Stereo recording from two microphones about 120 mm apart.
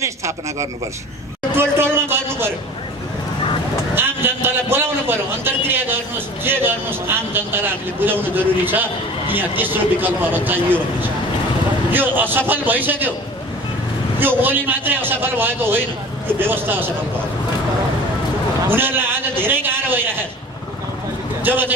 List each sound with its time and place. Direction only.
0.0 s speech: 25° right (ahead or behind)
1.5 s a sound: 20° right (ahead or behind)
3.9 s a man's voice: 20° right (ahead or behind)
14.2 s a man's voice: 15° right (ahead or behind)
18.7 s a sound: 20° right (ahead or behind)
21.5 s a man's voice: 15° right (ahead or behind)